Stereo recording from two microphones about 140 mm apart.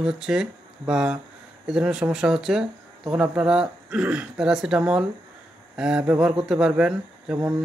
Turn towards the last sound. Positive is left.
turn(degrees=-5)  # may be behind; listen again after turning